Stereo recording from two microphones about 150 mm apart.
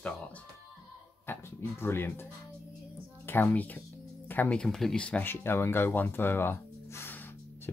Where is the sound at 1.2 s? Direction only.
15° left (ahead or behind).